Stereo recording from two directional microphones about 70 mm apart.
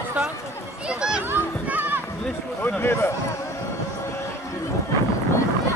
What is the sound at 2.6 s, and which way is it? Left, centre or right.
Speech, left.